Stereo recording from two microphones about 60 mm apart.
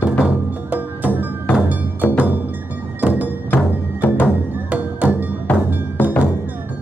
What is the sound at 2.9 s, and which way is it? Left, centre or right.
Music, right.